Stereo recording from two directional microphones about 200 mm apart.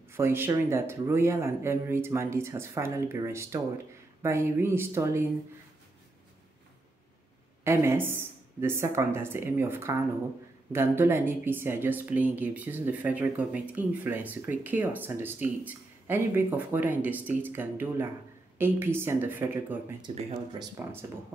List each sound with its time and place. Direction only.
0.1 s speech: 10° right (ahead or behind)
7.6 s speech: 15° right (ahead or behind)
20.0 s speech: 20° right (ahead or behind)